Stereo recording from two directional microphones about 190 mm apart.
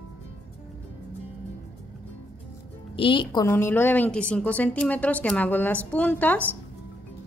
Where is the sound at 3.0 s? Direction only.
25° left (ahead or behind).